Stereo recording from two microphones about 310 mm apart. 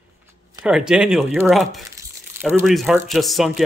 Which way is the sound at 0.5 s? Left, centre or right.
Centre.